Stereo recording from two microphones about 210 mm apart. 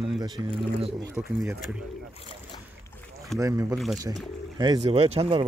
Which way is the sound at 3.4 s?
15° right (ahead or behind).